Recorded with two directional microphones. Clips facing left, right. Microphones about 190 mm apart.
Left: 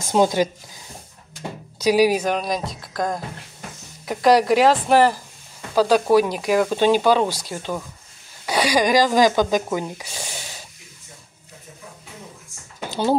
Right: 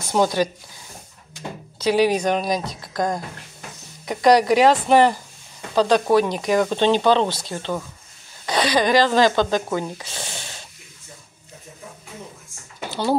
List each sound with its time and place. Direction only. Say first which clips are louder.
0.1 s speech: left 2 dB; 15° left (ahead or behind)
1.8 s a woman's voice: left 1 dB; 10° left (ahead or behind)